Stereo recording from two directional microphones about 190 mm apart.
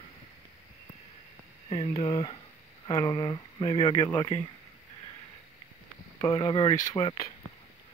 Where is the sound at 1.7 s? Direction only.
25° left (ahead or behind).